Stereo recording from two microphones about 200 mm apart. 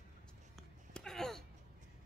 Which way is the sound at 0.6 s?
Centre (ahead or behind).